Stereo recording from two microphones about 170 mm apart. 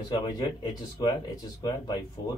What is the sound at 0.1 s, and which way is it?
Speech, 25° left (ahead or behind).